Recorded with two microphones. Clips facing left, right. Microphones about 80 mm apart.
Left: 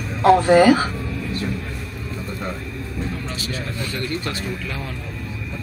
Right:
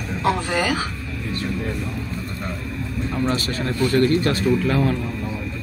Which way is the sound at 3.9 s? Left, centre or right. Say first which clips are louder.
Right 10 dB; right.